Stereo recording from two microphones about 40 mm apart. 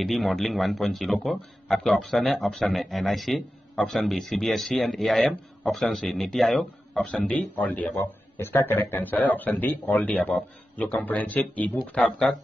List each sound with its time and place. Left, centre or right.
0.0 s a man's voice: centre
7.2 s a man's voice: left
7.5 s speech: left
8.4 s a man's voice: left
10.0 s speech: left